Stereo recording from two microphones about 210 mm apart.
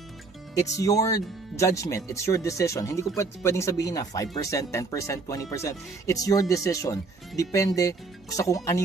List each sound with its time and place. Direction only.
0.7 s speech: 15° left (ahead or behind)